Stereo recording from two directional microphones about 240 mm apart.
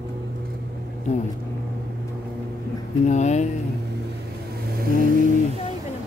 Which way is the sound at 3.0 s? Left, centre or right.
Left.